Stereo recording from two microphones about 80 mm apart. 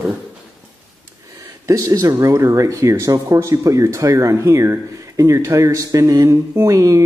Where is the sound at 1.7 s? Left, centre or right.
Right.